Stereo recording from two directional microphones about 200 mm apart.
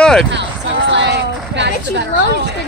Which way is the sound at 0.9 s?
60° right (ahead or behind).